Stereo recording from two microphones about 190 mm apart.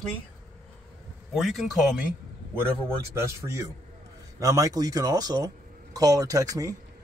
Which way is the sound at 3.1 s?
15° right (ahead or behind).